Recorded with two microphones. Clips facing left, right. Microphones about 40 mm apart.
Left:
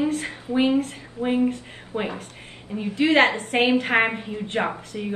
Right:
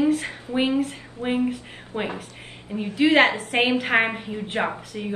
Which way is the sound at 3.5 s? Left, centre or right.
Right.